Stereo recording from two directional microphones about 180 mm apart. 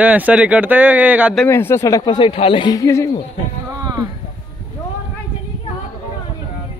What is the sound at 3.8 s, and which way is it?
Clip-clop, 20° right (ahead or behind).